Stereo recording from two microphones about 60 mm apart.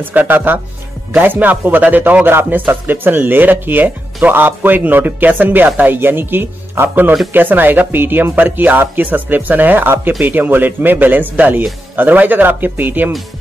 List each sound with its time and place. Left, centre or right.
0.0 s a man's voice: right